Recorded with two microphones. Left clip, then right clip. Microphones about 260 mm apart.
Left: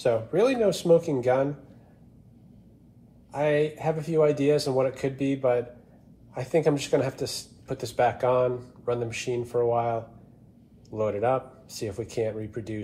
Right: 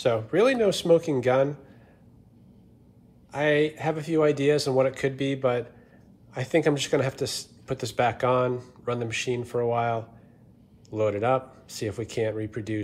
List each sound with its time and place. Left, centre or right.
0.0 s speech: right
3.3 s speech: right
11.0 s speech: right